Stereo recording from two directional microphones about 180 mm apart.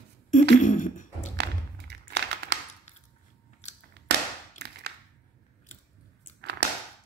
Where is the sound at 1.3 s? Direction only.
70° right (ahead or behind).